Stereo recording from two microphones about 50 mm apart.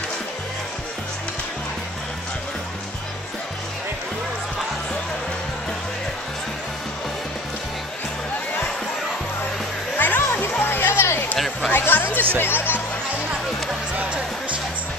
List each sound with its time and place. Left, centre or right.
9.9 s music: left
11.0 s a sound: left
11.3 s a sound: centre
11.7 s music: left
12.1 s music: right
12.4 s speech: left